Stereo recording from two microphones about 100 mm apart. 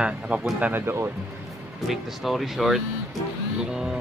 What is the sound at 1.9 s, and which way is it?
Speech, centre (ahead or behind).